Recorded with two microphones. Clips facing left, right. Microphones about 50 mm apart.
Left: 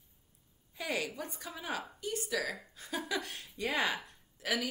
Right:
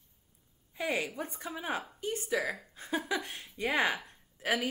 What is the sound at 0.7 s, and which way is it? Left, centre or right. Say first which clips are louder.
A woman's voice: right 3 dB; right.